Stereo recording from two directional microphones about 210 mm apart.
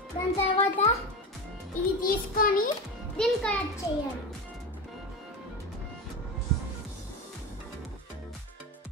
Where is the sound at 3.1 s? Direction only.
5° left (ahead or behind).